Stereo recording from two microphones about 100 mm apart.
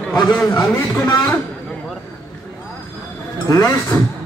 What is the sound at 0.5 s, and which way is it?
Speech, 20° left (ahead or behind).